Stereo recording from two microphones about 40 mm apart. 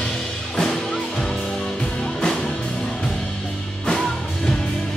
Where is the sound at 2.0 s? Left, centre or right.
Left.